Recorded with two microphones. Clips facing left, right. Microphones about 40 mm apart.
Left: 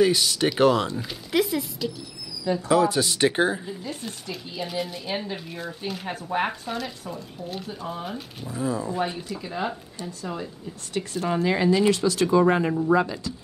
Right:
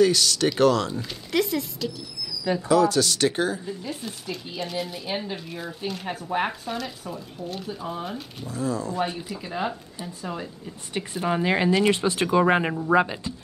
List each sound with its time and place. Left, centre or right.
0.0 s speech: centre
2.7 s speech: left
3.8 s speech: centre
8.5 s speech: centre
8.9 s speech: centre
10.9 s speech: centre